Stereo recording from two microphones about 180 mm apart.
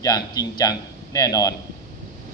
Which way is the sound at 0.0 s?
20° left (ahead or behind).